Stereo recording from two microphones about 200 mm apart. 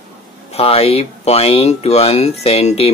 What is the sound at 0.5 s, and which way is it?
Speech, 30° left (ahead or behind).